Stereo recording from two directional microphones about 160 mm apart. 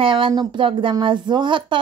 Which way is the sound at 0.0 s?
30° right (ahead or behind).